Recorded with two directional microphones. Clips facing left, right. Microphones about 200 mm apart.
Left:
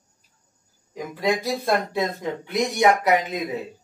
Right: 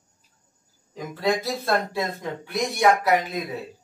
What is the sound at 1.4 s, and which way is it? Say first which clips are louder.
Speech: left 2 dB; 15° left (ahead or behind).